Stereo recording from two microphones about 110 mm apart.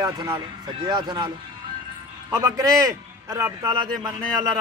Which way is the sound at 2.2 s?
30° right (ahead or behind).